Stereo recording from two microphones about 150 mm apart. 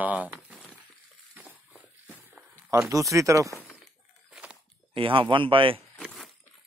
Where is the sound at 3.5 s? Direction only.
20° left (ahead or behind).